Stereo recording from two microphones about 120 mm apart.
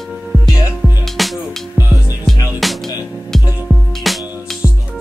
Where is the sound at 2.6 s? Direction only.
Centre (ahead or behind).